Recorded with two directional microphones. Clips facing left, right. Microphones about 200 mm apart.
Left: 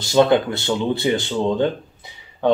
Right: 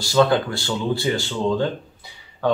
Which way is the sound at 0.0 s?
20° left (ahead or behind).